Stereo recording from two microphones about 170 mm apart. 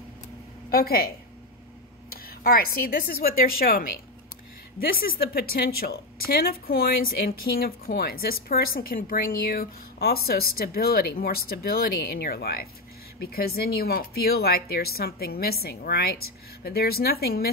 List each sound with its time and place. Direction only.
0.7 s a woman's voice: 60° left (ahead or behind)